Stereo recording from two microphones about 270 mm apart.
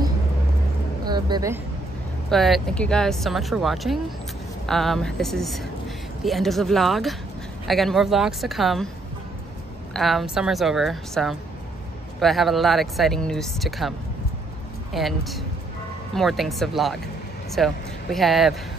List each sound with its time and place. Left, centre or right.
1.0 s music: centre
2.3 s speech: centre
9.9 s speech: centre